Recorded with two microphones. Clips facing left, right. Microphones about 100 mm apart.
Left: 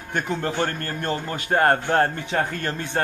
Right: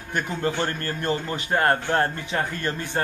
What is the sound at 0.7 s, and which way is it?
Speech, 10° right (ahead or behind).